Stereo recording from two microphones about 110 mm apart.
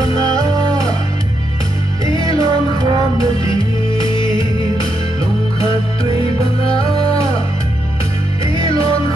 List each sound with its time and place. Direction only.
2.1 s music: 35° right (ahead or behind)